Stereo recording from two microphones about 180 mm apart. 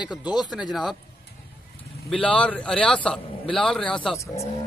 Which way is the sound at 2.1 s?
5° left (ahead or behind).